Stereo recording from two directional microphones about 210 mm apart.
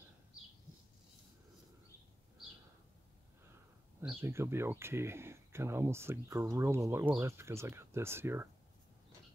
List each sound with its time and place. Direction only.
4.0 s speech: 10° right (ahead or behind)